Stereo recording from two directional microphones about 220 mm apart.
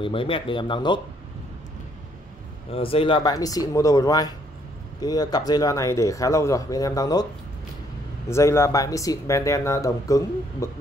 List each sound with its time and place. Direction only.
0.0 s speech: 25° left (ahead or behind)
2.7 s speech: 25° left (ahead or behind)
8.3 s speech: 10° left (ahead or behind)